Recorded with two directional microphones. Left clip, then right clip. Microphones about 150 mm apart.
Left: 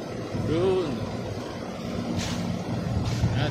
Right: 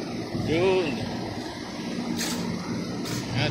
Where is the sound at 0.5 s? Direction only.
15° left (ahead or behind).